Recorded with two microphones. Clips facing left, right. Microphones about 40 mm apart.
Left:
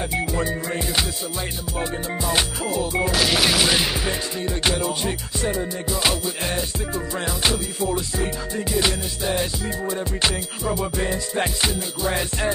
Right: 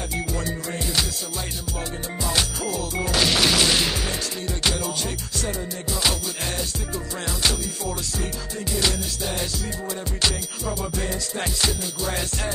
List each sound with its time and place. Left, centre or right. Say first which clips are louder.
0.1 s music: left 4 dB; left
3.1 s music: right 2 dB; centre